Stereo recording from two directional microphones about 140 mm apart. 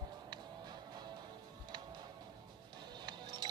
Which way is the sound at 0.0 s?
30° right (ahead or behind).